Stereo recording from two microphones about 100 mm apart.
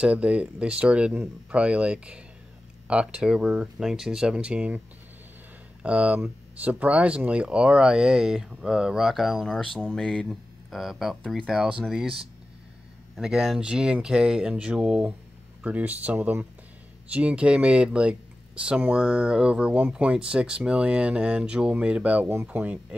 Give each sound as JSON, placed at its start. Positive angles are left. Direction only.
{"t": 0.0, "sound": "speech", "side_deg": -10}